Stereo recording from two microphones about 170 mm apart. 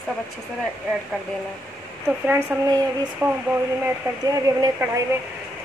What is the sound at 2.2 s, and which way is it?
Speech, 10° right (ahead or behind).